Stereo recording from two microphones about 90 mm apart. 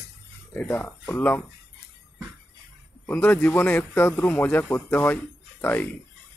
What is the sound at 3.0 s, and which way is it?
A man's voice, 20° left (ahead or behind).